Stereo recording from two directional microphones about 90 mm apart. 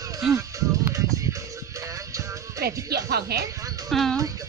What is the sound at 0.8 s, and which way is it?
Music, 35° right (ahead or behind).